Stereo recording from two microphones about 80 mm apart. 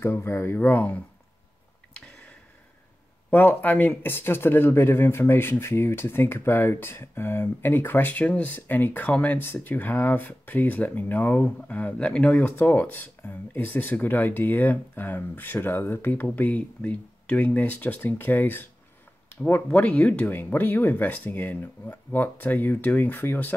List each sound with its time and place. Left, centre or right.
0.0 s speech: left
0.6 s speech: centre
2.0 s a sound: centre
3.3 s speech: left